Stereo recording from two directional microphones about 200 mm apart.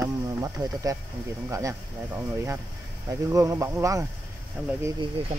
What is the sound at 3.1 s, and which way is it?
Mantra, 15° right (ahead or behind).